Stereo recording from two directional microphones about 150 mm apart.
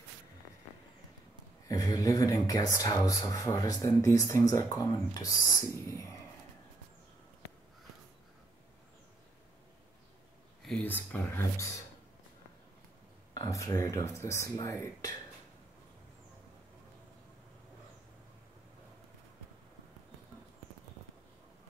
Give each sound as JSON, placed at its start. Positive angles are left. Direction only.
{"t": 1.7, "sound": "speech", "side_deg": 25}
{"t": 10.6, "sound": "speech", "side_deg": 5}
{"t": 13.3, "sound": "speech", "side_deg": 25}